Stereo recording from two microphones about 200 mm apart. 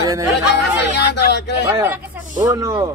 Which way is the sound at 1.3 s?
60° left (ahead or behind).